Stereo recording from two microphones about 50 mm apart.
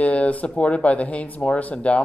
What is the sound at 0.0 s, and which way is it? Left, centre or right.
Speech, left.